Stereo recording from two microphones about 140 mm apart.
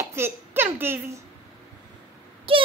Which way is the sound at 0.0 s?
20° right (ahead or behind).